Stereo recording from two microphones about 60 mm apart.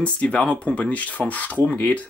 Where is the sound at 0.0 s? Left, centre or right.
Centre.